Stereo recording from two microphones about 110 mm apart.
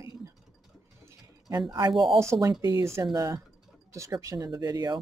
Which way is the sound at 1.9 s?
Centre (ahead or behind).